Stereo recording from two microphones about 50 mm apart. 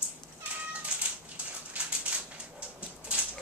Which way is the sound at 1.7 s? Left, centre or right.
Right.